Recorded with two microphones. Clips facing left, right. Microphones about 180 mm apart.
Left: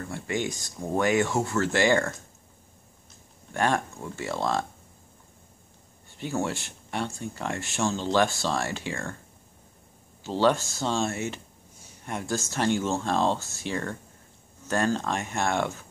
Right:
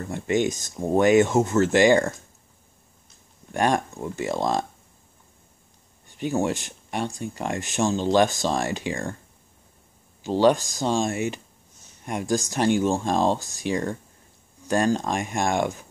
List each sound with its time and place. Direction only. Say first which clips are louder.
0.1 s speech: right 8 dB; 20° right (ahead or behind)
3.5 s speech: right 3 dB; 15° right (ahead or behind)
6.0 s speech: right 5 dB; 15° right (ahead or behind)
10.2 s speech: right 4 dB; 15° right (ahead or behind)